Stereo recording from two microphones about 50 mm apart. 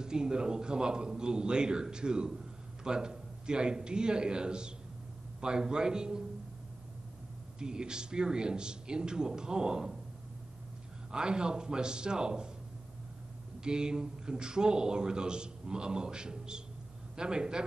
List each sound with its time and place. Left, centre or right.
0.0 s speech: centre
7.5 s speech: centre
11.1 s speech: centre
13.7 s speech: centre